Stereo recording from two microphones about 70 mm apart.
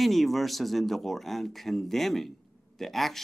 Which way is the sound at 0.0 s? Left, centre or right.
Centre.